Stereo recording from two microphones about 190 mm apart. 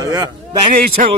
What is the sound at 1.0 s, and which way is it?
Speech, 45° right (ahead or behind).